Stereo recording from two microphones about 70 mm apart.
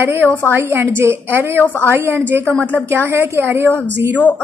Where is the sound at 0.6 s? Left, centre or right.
Right.